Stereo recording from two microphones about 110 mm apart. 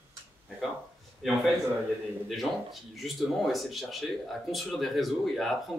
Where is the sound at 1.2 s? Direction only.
5° right (ahead or behind).